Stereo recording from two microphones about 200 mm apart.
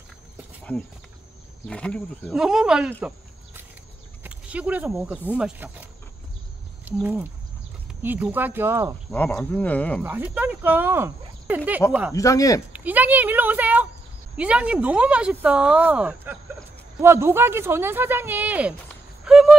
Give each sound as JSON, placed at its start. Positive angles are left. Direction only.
{"t": 1.7, "sound": "speech", "side_deg": 5}
{"t": 4.2, "sound": "speech", "side_deg": -5}
{"t": 9.1, "sound": "speech", "side_deg": 5}
{"t": 10.0, "sound": "speech", "side_deg": -10}
{"t": 12.1, "sound": "speech", "side_deg": 15}
{"t": 12.7, "sound": "speech", "side_deg": -10}
{"t": 19.2, "sound": "a sound", "side_deg": -5}